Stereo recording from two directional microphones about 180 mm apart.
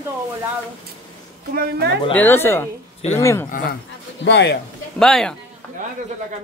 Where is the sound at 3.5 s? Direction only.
60° left (ahead or behind).